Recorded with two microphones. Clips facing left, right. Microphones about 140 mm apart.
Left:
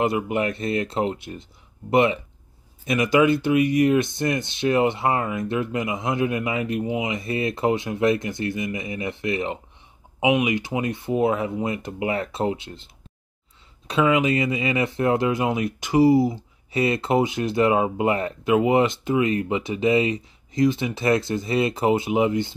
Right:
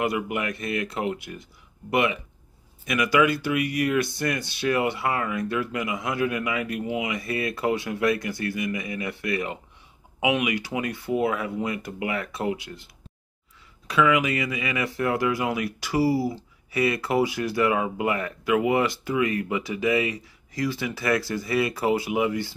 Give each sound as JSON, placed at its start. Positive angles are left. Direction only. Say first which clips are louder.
{"t": 0.0, "sound": "speech", "louder": "left 4 dB", "side_deg": 25}